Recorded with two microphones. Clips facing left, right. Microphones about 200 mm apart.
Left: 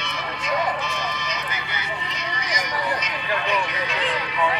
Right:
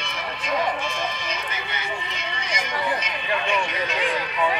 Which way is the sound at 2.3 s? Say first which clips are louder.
Left 1 dB; 25° right (ahead or behind).